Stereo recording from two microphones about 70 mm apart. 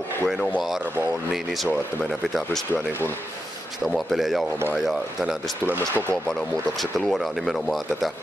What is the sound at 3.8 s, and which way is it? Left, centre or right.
Speech, centre.